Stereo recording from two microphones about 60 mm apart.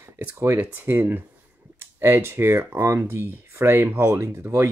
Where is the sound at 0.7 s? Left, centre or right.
Right.